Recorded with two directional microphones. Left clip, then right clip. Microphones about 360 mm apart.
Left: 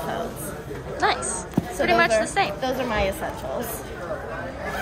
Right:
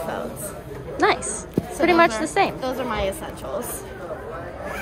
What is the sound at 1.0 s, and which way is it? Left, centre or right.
Speech, centre.